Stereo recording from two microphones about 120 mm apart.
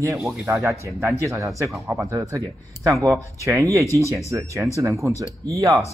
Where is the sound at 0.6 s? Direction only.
20° right (ahead or behind).